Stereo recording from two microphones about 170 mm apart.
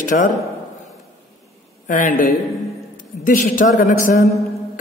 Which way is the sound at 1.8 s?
50° left (ahead or behind).